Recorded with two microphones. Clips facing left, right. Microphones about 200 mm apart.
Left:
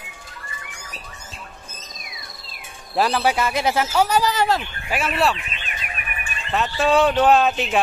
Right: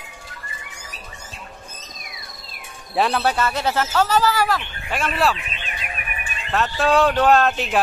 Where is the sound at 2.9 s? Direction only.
Centre (ahead or behind); by 4.6 s 20° left (ahead or behind).